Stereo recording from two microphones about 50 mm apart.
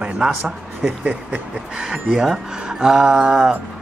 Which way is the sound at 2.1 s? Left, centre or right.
Centre.